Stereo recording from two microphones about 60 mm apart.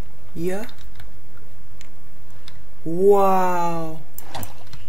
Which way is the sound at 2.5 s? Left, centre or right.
Centre.